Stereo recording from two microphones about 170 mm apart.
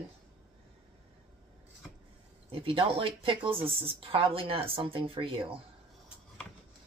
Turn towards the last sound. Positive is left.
turn(degrees=-30)  # may be behind; listen again after turning